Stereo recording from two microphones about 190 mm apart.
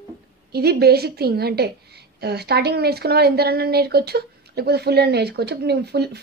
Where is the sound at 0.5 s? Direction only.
55° right (ahead or behind).